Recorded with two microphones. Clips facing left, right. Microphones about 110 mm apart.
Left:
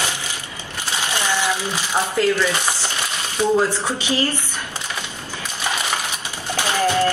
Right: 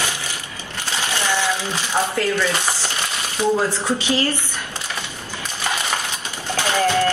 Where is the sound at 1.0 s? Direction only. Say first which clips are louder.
Even; 15° left (ahead or behind).